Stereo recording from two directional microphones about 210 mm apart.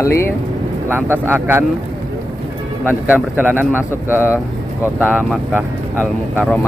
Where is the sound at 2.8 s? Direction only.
10° right (ahead or behind).